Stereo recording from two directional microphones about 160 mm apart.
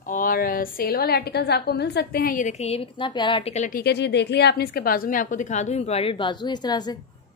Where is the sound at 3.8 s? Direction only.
90° left; by 6.9 s 25° left (ahead or behind).